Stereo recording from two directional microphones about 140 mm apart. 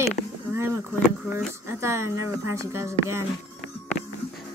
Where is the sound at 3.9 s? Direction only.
50° left (ahead or behind).